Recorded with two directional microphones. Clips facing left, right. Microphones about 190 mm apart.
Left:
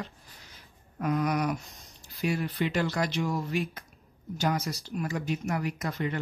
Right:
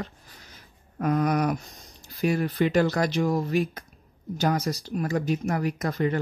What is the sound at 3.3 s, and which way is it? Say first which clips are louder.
Speech: right 6 dB; 35° right (ahead or behind).